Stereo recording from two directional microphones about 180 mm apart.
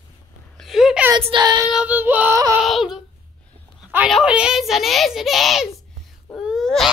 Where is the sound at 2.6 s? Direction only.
Centre (ahead or behind).